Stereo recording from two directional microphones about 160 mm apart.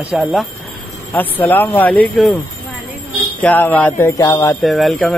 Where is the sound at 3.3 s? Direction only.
10° left (ahead or behind).